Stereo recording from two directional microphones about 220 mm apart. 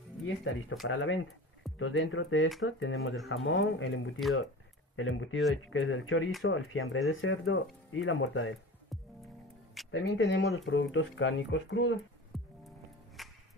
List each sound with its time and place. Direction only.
0.4 s speech: 60° left (ahead or behind)
9.8 s speech: 60° left (ahead or behind)
12.3 s music: centre (ahead or behind)